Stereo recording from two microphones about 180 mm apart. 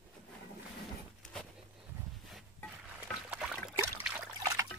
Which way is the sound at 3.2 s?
5° right (ahead or behind).